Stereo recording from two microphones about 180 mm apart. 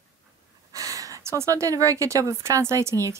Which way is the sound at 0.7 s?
20° right (ahead or behind).